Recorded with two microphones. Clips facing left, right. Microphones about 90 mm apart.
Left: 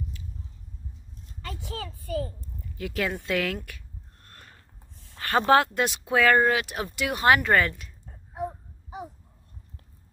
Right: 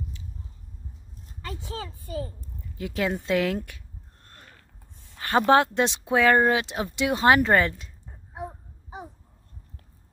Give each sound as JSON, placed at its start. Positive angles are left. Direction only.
{"t": 1.7, "sound": "speech", "side_deg": -25}
{"t": 5.1, "sound": "a sound", "side_deg": -20}
{"t": 5.5, "sound": "speech", "side_deg": -25}